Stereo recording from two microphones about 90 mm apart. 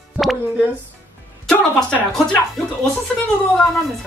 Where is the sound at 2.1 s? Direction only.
5° left (ahead or behind).